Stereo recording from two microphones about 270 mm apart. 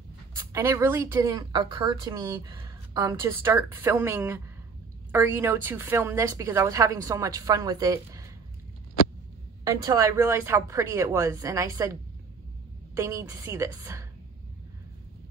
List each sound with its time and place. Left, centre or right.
0.5 s speech: centre
9.7 s speech: centre